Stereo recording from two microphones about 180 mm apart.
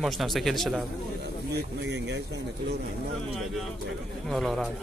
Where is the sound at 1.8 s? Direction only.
75° right (ahead or behind).